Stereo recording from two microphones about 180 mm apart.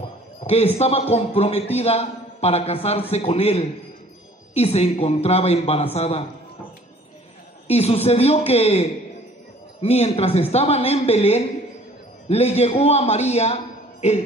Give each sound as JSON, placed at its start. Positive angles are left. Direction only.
{"t": 0.4, "sound": "a man's voice", "side_deg": 35}
{"t": 7.6, "sound": "a man's voice", "side_deg": 35}